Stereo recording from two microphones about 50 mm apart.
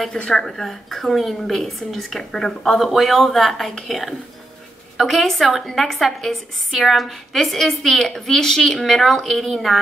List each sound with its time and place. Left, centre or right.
0.2 s speech: centre
0.5 s a woman's voice: centre